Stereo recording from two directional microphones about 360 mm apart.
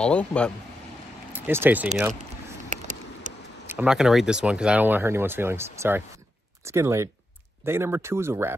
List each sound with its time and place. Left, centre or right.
0.0 s speech: centre
2.7 s a sound: right
3.6 s speech: centre